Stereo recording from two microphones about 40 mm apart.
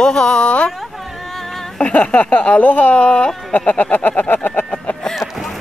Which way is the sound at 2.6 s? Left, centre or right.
Left.